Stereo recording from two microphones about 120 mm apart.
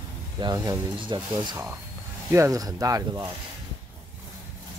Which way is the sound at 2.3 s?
25° right (ahead or behind).